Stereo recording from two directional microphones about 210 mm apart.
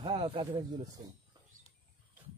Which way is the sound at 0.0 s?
25° right (ahead or behind).